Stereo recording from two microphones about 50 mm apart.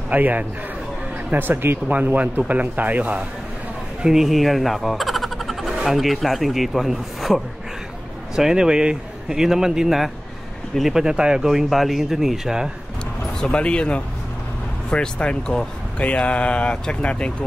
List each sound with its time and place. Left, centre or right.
0.1 s speech: right
1.3 s speech: right
1.9 s speech: right
4.0 s a sound: centre
5.8 s speech: centre
8.4 s speech: centre
13.4 s speech: centre